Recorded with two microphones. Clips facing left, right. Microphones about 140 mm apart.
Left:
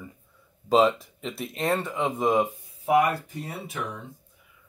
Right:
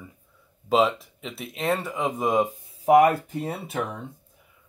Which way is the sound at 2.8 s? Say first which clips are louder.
Right 5 dB; 50° right (ahead or behind).